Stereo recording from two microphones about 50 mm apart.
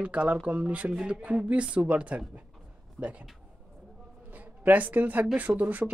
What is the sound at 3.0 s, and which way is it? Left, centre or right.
Speech, right.